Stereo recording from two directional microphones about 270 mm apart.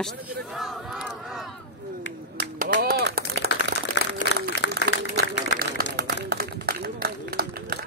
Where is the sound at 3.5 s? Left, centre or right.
Left.